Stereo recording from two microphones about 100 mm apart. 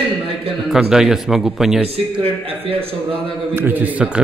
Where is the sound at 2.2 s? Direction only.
75° right (ahead or behind).